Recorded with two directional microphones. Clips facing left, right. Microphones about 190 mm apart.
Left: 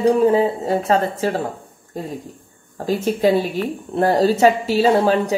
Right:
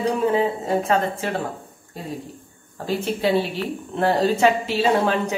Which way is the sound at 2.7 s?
40° left (ahead or behind).